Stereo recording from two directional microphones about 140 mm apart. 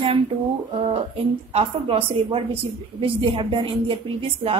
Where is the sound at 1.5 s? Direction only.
40° right (ahead or behind).